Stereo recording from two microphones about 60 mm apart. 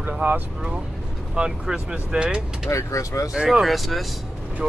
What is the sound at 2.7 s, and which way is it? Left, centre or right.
Speech, left.